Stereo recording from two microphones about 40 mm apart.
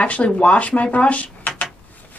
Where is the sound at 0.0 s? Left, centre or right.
Left.